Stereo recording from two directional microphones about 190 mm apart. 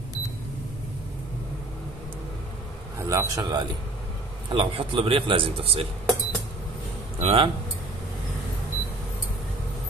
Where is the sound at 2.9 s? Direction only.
15° right (ahead or behind).